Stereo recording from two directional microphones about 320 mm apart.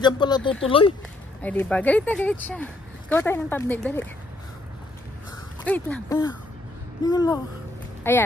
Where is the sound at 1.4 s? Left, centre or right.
Centre.